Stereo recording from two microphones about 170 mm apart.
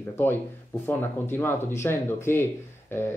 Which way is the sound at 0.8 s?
15° left (ahead or behind).